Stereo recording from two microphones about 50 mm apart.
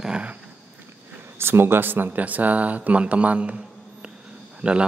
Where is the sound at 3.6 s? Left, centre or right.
Centre.